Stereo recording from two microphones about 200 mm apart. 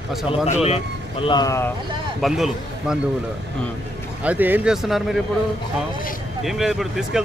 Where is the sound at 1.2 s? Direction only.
20° left (ahead or behind).